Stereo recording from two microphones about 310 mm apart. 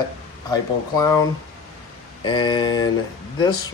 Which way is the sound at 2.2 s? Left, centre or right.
Centre.